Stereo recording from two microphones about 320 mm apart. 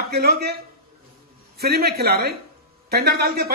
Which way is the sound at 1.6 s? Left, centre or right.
Right.